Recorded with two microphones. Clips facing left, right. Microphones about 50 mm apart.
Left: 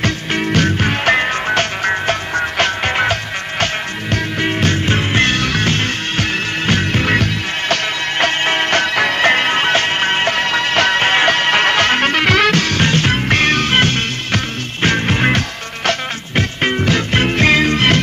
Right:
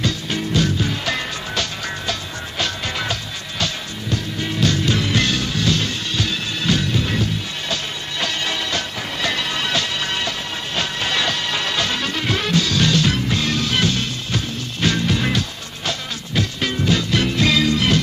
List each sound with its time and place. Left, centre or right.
0.0 s music: left
9.2 s music: left